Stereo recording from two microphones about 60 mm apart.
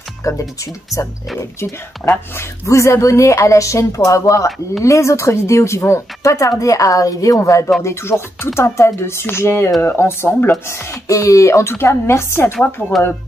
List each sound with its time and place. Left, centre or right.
0.2 s speech: left
1.6 s a woman's voice: left
7.8 s speech: left
10.7 s speech: left